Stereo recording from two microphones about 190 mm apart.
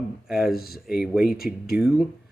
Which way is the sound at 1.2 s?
50° left (ahead or behind).